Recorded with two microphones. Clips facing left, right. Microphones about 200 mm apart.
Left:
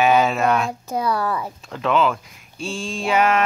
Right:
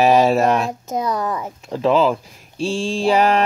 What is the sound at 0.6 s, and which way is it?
Speech, 20° right (ahead or behind).